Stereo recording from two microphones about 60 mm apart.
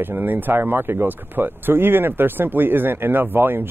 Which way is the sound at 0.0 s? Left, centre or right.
Right.